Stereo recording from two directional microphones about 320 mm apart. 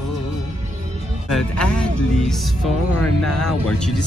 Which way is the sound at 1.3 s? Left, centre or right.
Centre.